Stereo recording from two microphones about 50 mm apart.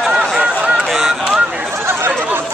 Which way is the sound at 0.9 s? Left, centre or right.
Centre.